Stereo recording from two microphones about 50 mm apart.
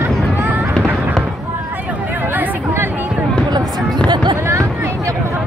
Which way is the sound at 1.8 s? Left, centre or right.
Right.